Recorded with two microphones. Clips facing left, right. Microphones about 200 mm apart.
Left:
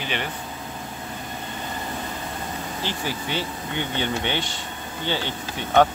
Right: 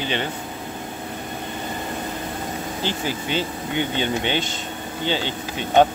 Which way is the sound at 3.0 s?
20° right (ahead or behind).